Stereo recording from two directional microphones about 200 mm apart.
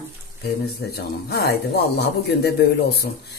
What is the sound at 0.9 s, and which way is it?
Speech, 55° left (ahead or behind).